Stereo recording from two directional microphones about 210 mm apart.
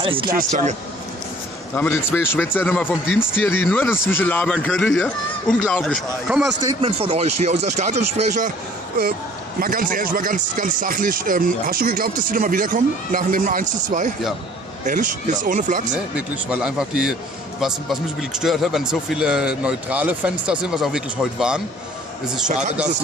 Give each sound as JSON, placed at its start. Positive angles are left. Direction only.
{"t": 0.0, "sound": "speech", "side_deg": -25}
{"t": 1.8, "sound": "speech", "side_deg": 10}
{"t": 6.8, "sound": "speech", "side_deg": -30}
{"t": 9.6, "sound": "speech", "side_deg": -45}
{"t": 16.2, "sound": "speech", "side_deg": -5}